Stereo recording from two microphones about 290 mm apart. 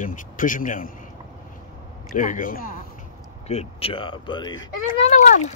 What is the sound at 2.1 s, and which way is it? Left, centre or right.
A man's voice, left.